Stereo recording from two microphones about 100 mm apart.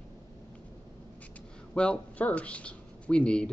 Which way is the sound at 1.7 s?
10° left (ahead or behind).